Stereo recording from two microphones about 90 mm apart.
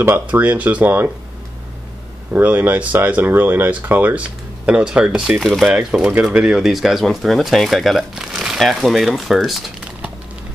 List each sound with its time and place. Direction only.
0.0 s speech: 25° right (ahead or behind)
2.3 s speech: 20° right (ahead or behind); by 9.7 s centre (ahead or behind)